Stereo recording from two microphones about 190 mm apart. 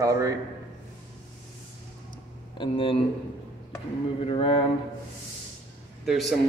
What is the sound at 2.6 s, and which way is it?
Speech, 30° left (ahead or behind).